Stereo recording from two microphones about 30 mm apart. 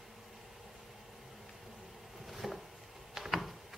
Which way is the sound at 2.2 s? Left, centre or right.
Centre.